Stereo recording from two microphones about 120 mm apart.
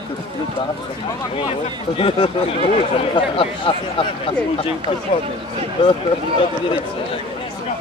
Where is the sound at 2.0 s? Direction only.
50° left (ahead or behind).